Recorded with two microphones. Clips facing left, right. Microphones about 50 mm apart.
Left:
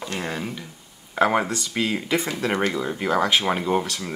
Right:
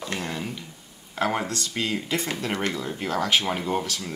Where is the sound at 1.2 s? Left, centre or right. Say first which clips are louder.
Left 5 dB; centre.